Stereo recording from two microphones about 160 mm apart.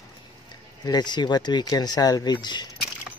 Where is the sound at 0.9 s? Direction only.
25° left (ahead or behind).